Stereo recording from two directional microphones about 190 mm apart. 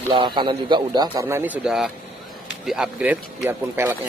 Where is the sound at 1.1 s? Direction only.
10° right (ahead or behind).